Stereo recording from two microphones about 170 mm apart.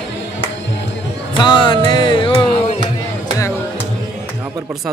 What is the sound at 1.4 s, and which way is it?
Music, 30° left (ahead or behind).